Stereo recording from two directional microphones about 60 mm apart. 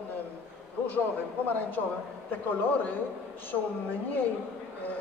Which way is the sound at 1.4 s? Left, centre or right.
Left.